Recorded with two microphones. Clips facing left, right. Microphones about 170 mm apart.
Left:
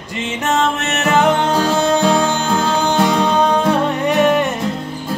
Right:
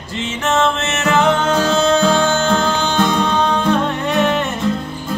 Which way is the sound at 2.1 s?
15° left (ahead or behind).